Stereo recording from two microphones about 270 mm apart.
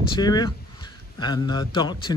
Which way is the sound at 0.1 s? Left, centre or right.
Centre.